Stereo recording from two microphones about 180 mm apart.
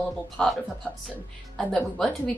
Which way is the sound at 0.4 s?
Centre (ahead or behind).